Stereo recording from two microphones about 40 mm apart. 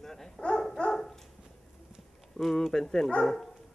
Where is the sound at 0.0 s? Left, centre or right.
Centre.